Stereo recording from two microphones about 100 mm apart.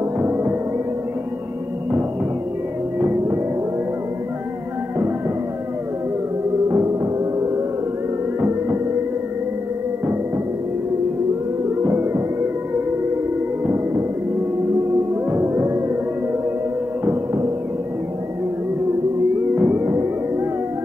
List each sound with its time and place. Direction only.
0.2 s music: 20° right (ahead or behind)
3.0 s music: 25° right (ahead or behind)
6.7 s music: 30° right (ahead or behind)
11.8 s music: 25° right (ahead or behind)
15.3 s music: 25° right (ahead or behind)
17.0 s music: 30° right (ahead or behind)
19.5 s music: 25° right (ahead or behind)